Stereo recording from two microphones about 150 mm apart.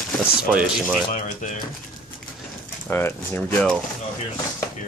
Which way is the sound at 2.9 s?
15° left (ahead or behind).